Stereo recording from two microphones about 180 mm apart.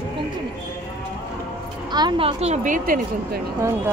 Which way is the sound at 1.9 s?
25° right (ahead or behind).